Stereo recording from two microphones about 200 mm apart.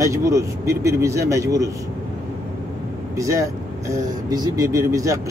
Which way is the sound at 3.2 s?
15° right (ahead or behind).